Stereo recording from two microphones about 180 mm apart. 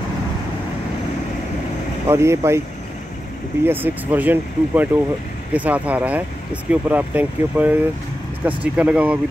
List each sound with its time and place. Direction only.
2.0 s speech: 15° right (ahead or behind)
3.6 s speech: 10° right (ahead or behind)